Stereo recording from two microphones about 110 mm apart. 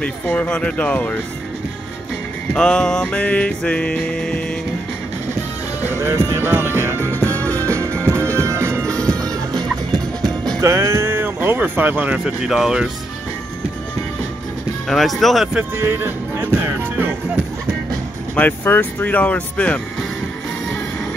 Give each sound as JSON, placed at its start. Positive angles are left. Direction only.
{"t": 0.0, "sound": "music", "side_deg": 10}
{"t": 2.5, "sound": "music", "side_deg": 5}
{"t": 5.9, "sound": "speech", "side_deg": -25}
{"t": 6.8, "sound": "music", "side_deg": -25}
{"t": 7.2, "sound": "music", "side_deg": 15}
{"t": 7.7, "sound": "music", "side_deg": -25}
{"t": 8.8, "sound": "music", "side_deg": 10}
{"t": 10.6, "sound": "speech", "side_deg": -25}
{"t": 14.9, "sound": "speech", "side_deg": 0}
{"t": 15.8, "sound": "music", "side_deg": -20}
{"t": 18.3, "sound": "music", "side_deg": 15}